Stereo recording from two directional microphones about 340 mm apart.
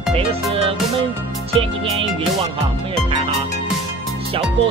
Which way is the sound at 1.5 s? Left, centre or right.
Centre.